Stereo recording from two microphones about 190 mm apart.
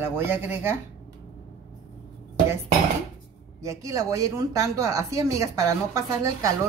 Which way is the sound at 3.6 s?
15° right (ahead or behind).